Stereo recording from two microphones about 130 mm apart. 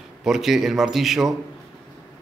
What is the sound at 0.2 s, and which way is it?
Speech, centre (ahead or behind).